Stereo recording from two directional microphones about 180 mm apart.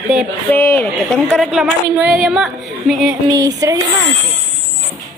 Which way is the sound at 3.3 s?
20° right (ahead or behind).